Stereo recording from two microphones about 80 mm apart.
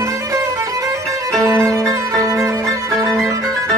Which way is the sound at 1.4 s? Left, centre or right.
Right.